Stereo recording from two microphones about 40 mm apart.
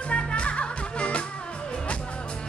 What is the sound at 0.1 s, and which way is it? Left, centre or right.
Music, left.